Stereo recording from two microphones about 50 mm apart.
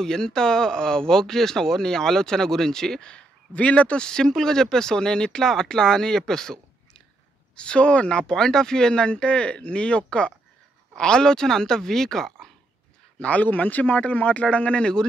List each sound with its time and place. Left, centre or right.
0.0 s speech: centre
7.5 s speech: left
13.2 s speech: left